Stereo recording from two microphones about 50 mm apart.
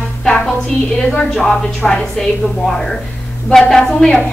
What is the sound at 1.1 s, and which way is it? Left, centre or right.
Speech, centre.